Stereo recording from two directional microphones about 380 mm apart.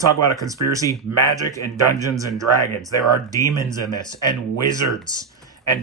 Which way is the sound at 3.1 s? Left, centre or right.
Centre.